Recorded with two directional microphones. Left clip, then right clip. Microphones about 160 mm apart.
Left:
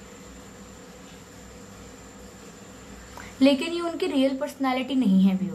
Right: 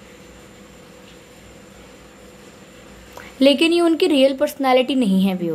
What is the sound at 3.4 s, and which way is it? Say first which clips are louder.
Speech: right 8 dB; 50° right (ahead or behind).